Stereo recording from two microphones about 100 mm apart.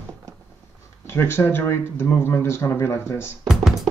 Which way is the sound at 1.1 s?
25° left (ahead or behind).